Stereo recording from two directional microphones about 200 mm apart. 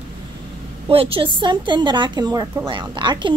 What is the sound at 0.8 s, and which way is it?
A woman's voice, 30° right (ahead or behind).